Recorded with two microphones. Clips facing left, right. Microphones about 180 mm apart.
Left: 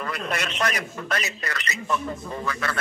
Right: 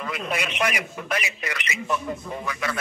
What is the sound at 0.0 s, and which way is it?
A man's voice, 5° right (ahead or behind).